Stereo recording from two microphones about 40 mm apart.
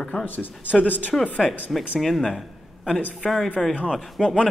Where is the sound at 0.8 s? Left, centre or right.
Left.